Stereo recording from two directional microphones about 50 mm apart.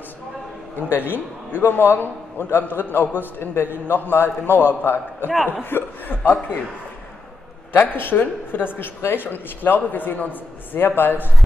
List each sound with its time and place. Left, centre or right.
0.8 s a man's voice: left
7.7 s a man's voice: left